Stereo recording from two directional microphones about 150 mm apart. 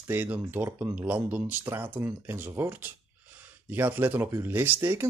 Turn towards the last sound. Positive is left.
turn(degrees=-15)  # may be behind; listen again after turning